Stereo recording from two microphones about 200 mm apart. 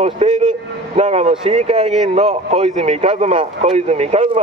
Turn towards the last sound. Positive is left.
turn(degrees=-30)  # may be behind; listen again after turning